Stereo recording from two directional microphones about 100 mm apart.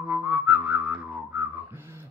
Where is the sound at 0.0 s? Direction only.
15° right (ahead or behind).